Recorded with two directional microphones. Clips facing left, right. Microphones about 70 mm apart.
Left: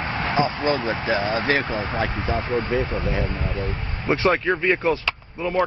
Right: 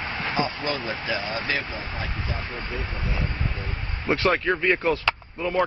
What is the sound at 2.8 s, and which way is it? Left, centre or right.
Speech, left.